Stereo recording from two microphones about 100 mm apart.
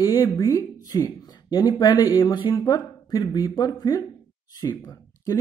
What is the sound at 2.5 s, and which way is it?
Speech, 40° left (ahead or behind).